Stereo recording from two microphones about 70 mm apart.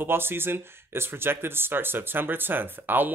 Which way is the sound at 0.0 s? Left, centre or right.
Right.